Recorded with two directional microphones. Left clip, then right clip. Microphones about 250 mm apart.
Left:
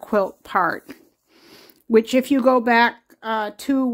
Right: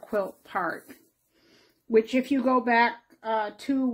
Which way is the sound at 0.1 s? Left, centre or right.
Left.